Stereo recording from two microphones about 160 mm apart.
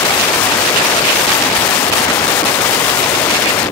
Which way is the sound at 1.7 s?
20° left (ahead or behind).